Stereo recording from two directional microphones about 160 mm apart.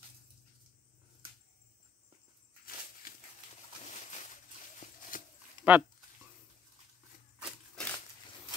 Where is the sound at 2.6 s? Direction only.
65° left (ahead or behind).